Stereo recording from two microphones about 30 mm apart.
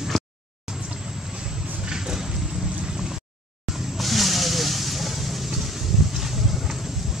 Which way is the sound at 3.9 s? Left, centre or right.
Centre.